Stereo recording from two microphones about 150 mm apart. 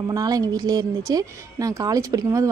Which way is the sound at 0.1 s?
25° right (ahead or behind).